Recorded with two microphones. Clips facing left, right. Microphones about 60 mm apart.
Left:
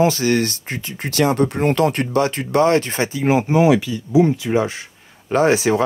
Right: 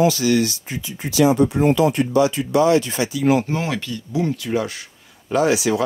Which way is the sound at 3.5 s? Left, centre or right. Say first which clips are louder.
Left 9 dB; centre.